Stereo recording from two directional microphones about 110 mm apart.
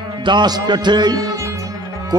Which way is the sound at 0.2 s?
40° right (ahead or behind).